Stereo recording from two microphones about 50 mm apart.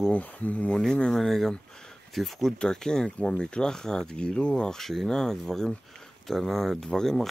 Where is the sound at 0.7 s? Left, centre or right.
Centre.